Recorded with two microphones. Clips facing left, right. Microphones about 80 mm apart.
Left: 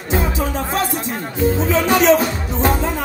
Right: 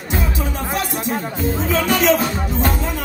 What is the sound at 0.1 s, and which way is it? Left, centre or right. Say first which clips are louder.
Music: left 4 dB; left.